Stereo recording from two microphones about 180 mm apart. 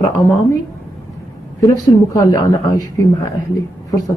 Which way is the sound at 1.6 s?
20° left (ahead or behind).